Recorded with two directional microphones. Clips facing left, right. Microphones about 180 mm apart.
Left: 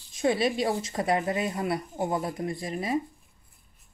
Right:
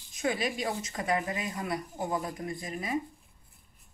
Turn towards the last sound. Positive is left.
turn(degrees=30)  # may be behind; listen again after turning